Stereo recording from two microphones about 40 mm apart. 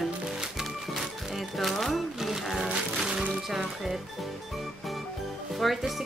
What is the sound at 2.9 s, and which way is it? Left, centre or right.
Music, centre.